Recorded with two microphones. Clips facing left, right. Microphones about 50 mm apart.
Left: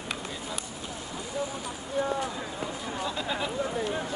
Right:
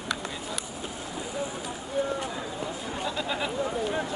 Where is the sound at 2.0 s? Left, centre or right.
Centre.